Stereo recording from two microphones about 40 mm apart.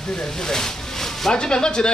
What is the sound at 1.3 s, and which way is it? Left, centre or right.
Speech, left.